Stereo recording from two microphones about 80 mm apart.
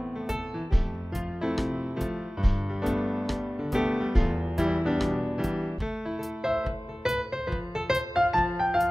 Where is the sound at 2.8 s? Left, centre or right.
Centre.